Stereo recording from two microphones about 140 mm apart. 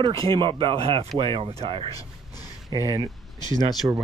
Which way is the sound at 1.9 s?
25° left (ahead or behind).